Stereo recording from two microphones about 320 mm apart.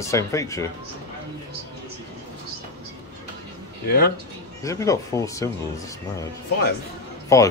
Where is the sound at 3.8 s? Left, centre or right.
Left.